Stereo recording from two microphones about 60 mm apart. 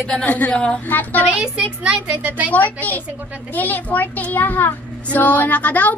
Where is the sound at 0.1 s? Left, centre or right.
Left.